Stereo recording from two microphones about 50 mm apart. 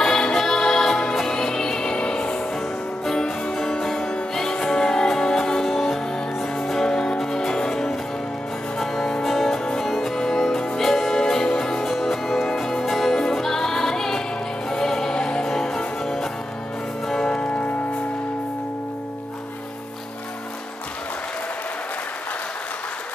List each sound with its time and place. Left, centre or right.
0.0 s music: centre